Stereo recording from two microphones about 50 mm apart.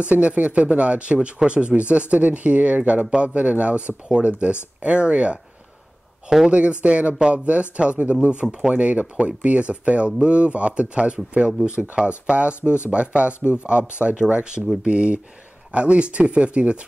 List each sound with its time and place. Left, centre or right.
0.0 s speech: right
6.5 s speech: right
12.6 s speech: left
12.9 s speech: right
13.3 s speech: left
13.7 s speech: right